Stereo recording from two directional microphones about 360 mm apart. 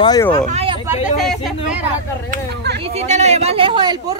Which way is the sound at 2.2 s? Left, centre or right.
Right.